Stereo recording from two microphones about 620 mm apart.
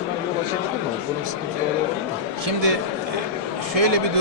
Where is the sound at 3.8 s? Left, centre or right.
Right.